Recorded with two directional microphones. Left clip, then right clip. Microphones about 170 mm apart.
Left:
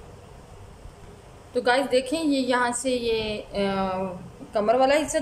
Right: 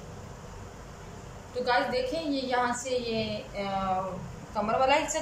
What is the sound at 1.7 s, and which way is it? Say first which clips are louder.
A woman's voice: left 5 dB; 50° left (ahead or behind).